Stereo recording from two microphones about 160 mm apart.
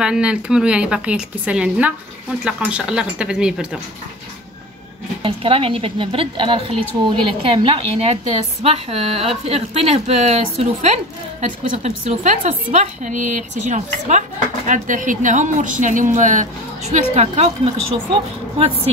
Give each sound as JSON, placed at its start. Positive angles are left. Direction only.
{"t": 0.0, "sound": "a woman's voice", "side_deg": -5}
{"t": 5.2, "sound": "a woman's voice", "side_deg": -35}